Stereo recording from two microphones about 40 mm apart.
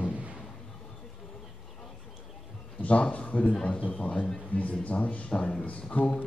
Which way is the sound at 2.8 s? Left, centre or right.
Left.